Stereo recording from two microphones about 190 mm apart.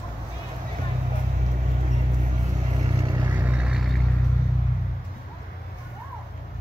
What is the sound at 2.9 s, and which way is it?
Vehicle, 15° right (ahead or behind).